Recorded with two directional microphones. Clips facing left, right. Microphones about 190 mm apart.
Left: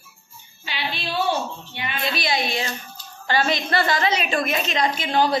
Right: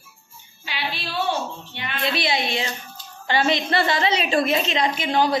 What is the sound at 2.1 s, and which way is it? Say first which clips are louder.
A woman's voice: right 1 dB; 25° right (ahead or behind).